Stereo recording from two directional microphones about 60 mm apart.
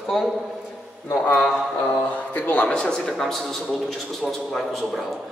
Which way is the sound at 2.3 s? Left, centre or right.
Left.